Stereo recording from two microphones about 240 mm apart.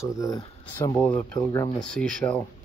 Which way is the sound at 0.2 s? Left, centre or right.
Centre.